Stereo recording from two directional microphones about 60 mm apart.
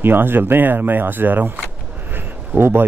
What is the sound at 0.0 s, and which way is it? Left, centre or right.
A man's voice, right.